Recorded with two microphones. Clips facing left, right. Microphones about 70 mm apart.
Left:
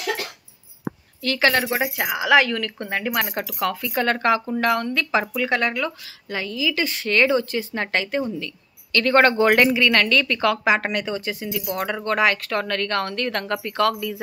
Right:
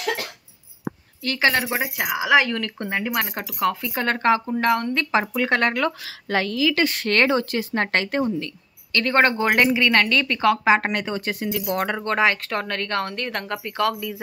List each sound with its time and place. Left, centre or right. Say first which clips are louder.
1.2 s speech: left 1 dB; right
2.0 s speech: left 1 dB; centre
3.3 s speech: right 1 dB; right
5.3 s a woman's voice: right 1 dB; right
8.9 s speech: left 2 dB; right
12.2 s speech: even; right